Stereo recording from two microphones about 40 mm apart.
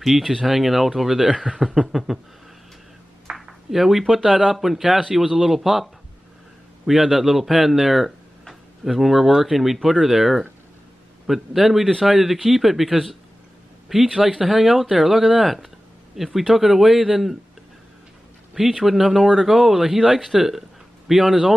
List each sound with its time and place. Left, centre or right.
0.5 s speech: centre
1.3 s speech: right
1.6 s speech: centre
3.3 s a sound: centre
4.1 s speech: centre
6.9 s speech: centre
18.5 s speech: centre